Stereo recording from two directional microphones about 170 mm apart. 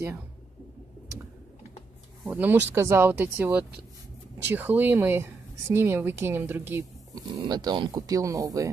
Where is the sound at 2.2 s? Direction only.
10° right (ahead or behind).